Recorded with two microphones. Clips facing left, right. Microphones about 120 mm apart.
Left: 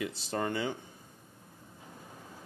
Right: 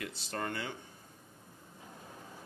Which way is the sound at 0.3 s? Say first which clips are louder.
Left 5 dB; 15° left (ahead or behind).